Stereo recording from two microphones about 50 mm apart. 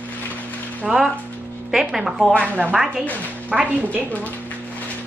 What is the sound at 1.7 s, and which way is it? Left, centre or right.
Speech, centre.